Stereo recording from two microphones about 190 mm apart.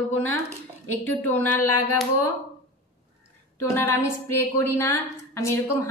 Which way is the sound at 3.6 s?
15° left (ahead or behind).